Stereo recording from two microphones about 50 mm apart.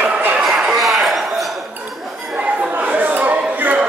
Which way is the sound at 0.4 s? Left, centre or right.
Centre.